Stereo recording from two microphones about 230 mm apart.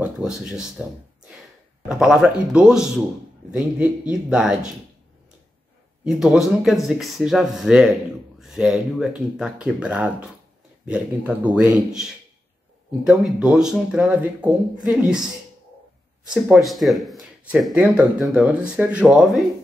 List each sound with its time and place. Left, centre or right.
0.0 s speech: centre
1.9 s speech: centre
6.0 s speech: centre
16.4 s speech: centre